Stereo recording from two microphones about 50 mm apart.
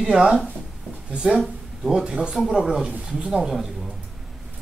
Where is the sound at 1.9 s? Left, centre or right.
Centre.